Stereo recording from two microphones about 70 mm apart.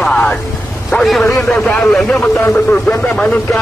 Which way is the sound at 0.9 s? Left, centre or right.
Centre.